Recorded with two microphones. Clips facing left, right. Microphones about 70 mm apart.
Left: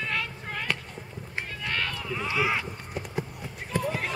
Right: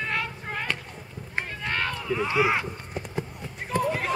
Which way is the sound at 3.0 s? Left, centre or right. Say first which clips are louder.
Even; centre.